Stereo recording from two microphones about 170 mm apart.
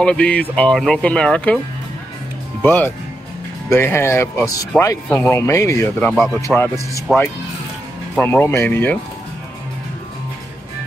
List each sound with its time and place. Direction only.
0.0 s speech: 5° left (ahead or behind)
2.6 s speech: 10° left (ahead or behind)
5.9 s speech: 5° left (ahead or behind)
6.3 s speech: 15° left (ahead or behind)
8.2 s speech: 10° left (ahead or behind)